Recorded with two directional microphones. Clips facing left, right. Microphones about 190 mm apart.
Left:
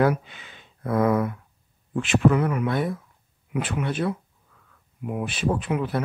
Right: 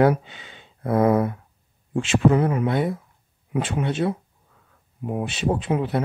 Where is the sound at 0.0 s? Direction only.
30° right (ahead or behind).